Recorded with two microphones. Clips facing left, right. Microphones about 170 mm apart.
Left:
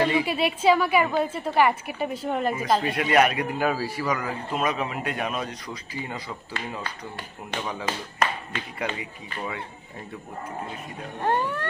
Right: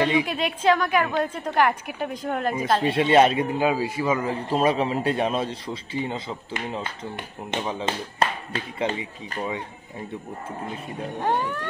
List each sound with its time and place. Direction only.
0.2 s a woman's voice: 5° left (ahead or behind)
2.8 s a man's voice: 25° right (ahead or behind)
11.1 s a woman's voice: centre (ahead or behind)